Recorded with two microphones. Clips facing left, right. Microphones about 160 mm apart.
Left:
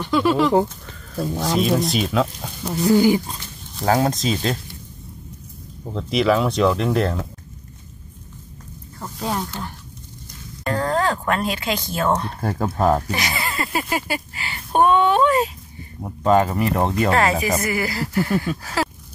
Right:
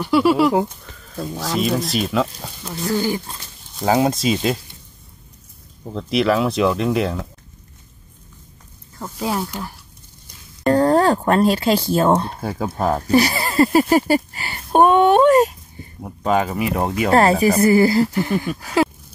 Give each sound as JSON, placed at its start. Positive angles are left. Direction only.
{"t": 0.0, "sound": "speech", "side_deg": -10}
{"t": 1.1, "sound": "speech", "side_deg": 5}
{"t": 2.6, "sound": "speech", "side_deg": 15}
{"t": 3.8, "sound": "speech", "side_deg": -5}
{"t": 5.9, "sound": "speech", "side_deg": 0}
{"t": 9.0, "sound": "speech", "side_deg": -5}
{"t": 10.6, "sound": "speech", "side_deg": -35}
{"t": 12.3, "sound": "speech", "side_deg": -5}
{"t": 13.1, "sound": "speech", "side_deg": -35}
{"t": 16.0, "sound": "speech", "side_deg": -5}
{"t": 17.1, "sound": "speech", "side_deg": -35}